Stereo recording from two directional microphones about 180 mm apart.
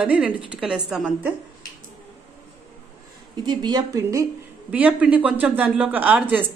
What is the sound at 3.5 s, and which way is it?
Speech, 25° right (ahead or behind).